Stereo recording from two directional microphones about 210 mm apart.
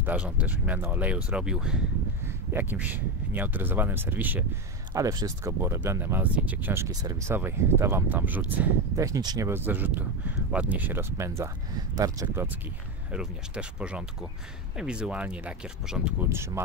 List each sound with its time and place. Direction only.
0.0 s speech: 5° right (ahead or behind)